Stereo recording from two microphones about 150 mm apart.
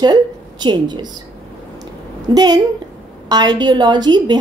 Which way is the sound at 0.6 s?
30° right (ahead or behind).